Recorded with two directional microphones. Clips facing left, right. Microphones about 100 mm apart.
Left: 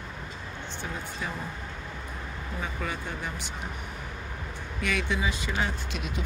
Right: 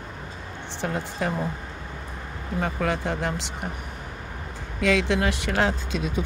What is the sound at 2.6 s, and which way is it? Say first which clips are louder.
Speech: right 9 dB; 85° right.